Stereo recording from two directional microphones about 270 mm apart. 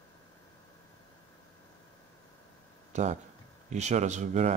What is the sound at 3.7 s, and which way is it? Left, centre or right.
Speech, right.